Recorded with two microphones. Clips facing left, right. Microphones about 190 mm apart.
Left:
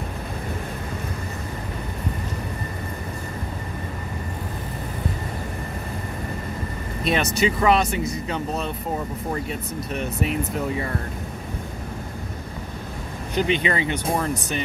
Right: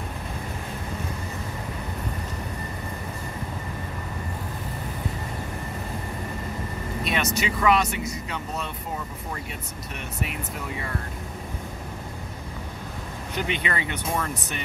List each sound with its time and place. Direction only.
7.1 s speech: 30° left (ahead or behind)
13.5 s speech: 25° left (ahead or behind)